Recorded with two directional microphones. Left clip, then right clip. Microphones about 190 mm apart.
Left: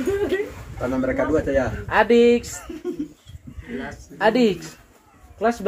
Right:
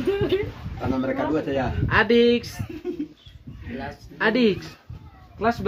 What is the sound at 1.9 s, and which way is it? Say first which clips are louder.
Speech: left 2 dB; 30° right (ahead or behind).